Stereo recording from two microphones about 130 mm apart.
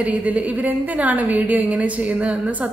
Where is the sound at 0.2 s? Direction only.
10° right (ahead or behind).